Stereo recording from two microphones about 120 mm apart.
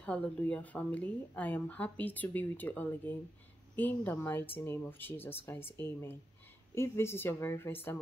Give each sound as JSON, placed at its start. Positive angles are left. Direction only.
{"t": 0.0, "sound": "a woman's voice", "side_deg": 10}